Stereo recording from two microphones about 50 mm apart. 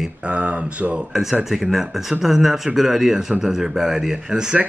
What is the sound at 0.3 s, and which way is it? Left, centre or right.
Speech, right.